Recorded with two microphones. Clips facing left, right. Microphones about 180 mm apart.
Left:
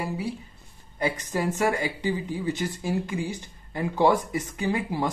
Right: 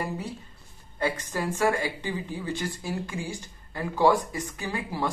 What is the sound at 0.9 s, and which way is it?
Speech, 15° left (ahead or behind).